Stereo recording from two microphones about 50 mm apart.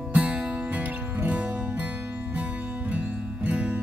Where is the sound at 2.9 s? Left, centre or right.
Right.